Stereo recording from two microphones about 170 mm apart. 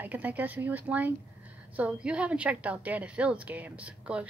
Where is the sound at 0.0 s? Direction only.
10° right (ahead or behind).